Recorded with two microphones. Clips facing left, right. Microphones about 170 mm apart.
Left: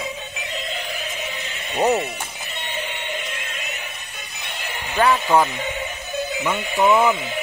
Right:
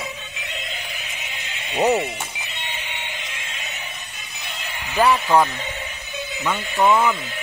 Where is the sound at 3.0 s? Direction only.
55° left (ahead or behind).